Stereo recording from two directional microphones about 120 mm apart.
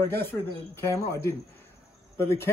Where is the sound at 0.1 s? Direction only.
20° left (ahead or behind).